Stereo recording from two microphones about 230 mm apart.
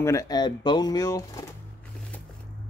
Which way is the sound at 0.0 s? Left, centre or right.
Centre.